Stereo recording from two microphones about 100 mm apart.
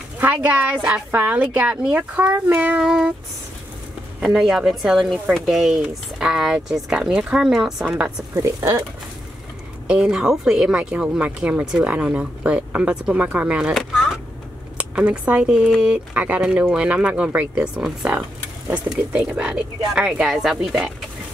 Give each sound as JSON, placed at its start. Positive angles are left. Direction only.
{"t": 0.2, "sound": "a woman's voice", "side_deg": -15}
{"t": 4.2, "sound": "speech", "side_deg": -5}
{"t": 8.4, "sound": "speech", "side_deg": -30}
{"t": 9.8, "sound": "a woman's voice", "side_deg": -10}
{"t": 14.8, "sound": "a woman's voice", "side_deg": -15}